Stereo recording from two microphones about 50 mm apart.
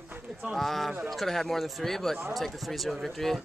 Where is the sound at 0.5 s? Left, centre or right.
Centre.